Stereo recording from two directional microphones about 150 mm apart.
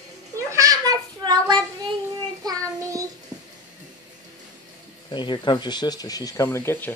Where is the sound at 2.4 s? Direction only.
25° right (ahead or behind).